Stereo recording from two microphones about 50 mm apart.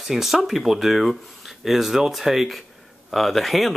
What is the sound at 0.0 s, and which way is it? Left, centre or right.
Speech, centre.